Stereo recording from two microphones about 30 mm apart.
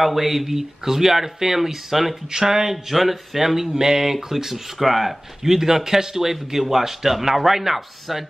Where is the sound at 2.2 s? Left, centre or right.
Centre.